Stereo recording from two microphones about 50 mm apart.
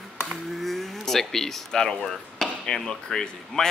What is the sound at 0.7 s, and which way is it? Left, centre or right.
Speech, centre.